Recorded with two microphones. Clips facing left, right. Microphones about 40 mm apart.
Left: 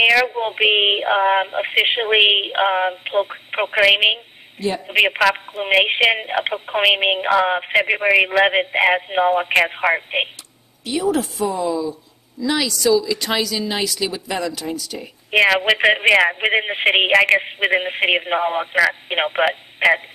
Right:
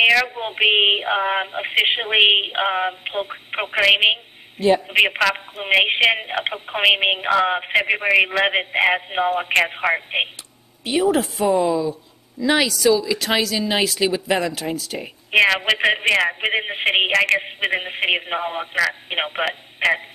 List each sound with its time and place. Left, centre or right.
0.0 s speech: centre
4.6 s a man's voice: right
4.8 s speech: centre
10.9 s speech: right
11.4 s a man's voice: right
11.7 s speech: centre
12.4 s speech: right
12.6 s speech: centre
15.3 s speech: centre